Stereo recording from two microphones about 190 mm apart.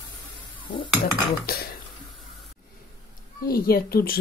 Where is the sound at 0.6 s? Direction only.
25° left (ahead or behind).